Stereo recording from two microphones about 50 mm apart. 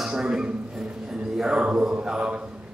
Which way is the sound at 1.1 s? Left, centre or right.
Centre.